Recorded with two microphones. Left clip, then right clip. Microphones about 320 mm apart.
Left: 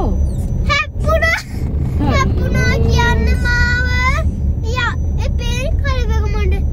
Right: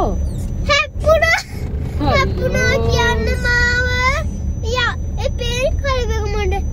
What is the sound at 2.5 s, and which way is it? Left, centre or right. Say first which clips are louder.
Child singing: right 3 dB; centre.